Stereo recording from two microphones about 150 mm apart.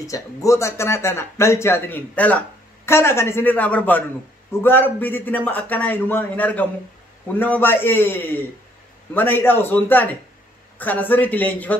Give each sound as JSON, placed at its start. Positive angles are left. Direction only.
{"t": 0.0, "sound": "speech", "side_deg": 20}